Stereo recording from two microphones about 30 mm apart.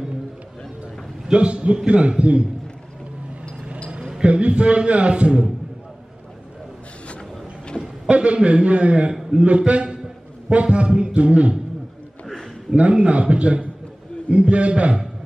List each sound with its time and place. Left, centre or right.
1.3 s a man's voice: right
4.2 s a man's voice: right
8.1 s a man's voice: right
9.1 s a sound: right
9.4 s a man's voice: right
11.1 s music: right
12.7 s a man's voice: right